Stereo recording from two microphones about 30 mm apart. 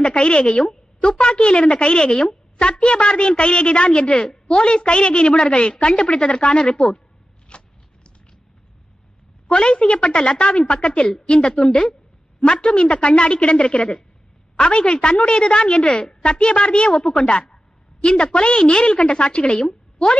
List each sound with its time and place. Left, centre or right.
0.0 s a woman's voice: left
7.4 s a sound: left
9.5 s a woman's voice: left